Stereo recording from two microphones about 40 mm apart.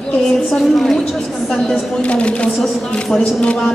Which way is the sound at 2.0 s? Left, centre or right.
Left.